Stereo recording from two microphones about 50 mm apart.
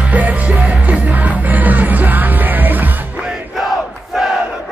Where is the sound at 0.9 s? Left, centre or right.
Right.